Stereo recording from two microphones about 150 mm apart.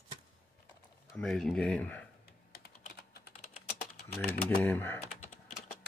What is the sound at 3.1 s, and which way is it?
Typing, 85° left.